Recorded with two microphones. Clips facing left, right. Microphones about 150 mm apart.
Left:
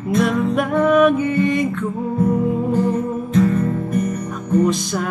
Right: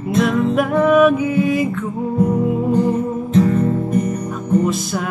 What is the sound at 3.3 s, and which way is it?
Music, 30° right (ahead or behind).